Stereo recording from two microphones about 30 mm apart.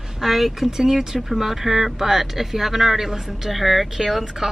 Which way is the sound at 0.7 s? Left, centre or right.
Centre.